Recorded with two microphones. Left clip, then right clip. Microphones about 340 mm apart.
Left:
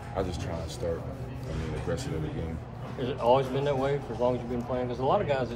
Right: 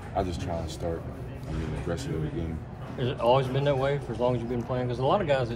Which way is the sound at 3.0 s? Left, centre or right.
Right.